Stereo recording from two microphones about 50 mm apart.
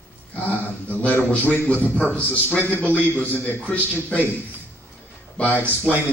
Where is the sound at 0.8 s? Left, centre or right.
Left.